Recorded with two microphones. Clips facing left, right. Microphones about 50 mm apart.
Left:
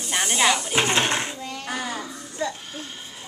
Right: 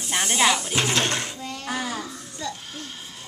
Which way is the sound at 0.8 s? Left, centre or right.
Centre.